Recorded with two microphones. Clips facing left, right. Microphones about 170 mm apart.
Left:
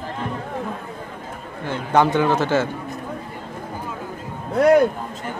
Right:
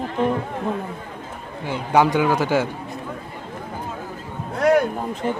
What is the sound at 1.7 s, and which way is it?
A man's voice, 10° right (ahead or behind).